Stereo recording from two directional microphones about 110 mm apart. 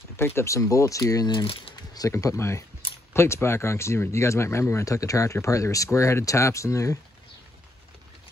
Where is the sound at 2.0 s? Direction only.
30° left (ahead or behind).